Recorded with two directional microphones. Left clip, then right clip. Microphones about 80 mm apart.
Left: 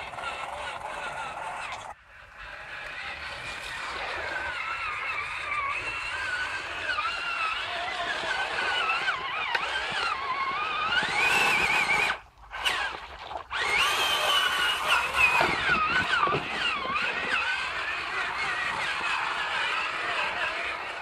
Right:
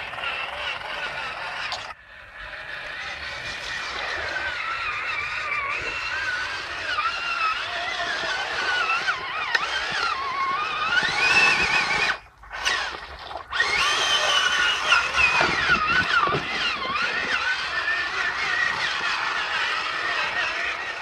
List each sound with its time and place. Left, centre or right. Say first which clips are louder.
6.9 s a sound: right 4 dB; left
8.7 s vehicle: right 5 dB; left
10.5 s neigh: right 4 dB; left
13.6 s a sound: right 3 dB; left
16.3 s vehicle: right 3 dB; left
18.4 s fowl: right 5 dB; left
19.4 s vehicle: right 3 dB; left